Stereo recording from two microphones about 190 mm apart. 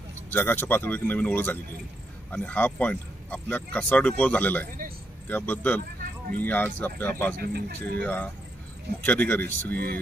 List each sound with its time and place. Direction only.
0.3 s speech: 10° left (ahead or behind)
7.4 s speech: 55° right (ahead or behind)
8.0 s speech: 5° left (ahead or behind)